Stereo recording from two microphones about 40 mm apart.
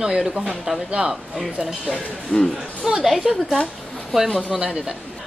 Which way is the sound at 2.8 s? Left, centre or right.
Centre.